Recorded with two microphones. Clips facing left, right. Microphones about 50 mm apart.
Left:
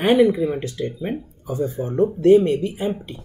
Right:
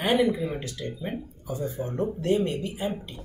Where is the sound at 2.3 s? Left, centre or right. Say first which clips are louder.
Left 11 dB; left.